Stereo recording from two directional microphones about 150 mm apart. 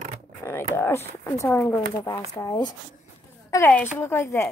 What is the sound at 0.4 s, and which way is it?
A woman's voice, 15° left (ahead or behind).